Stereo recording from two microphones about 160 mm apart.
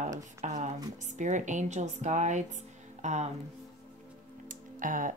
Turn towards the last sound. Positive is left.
turn(degrees=-55)  # may be behind; listen again after turning